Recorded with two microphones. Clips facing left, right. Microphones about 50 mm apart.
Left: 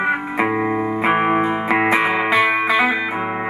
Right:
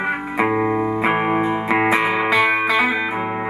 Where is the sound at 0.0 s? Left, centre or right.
Centre.